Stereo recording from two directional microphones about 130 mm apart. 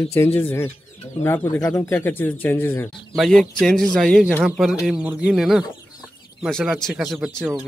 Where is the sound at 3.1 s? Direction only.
Centre (ahead or behind).